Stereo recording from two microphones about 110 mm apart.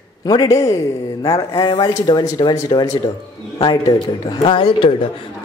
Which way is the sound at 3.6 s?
45° left (ahead or behind).